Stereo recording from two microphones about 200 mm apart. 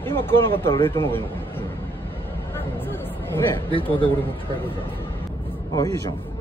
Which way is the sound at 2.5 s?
10° left (ahead or behind).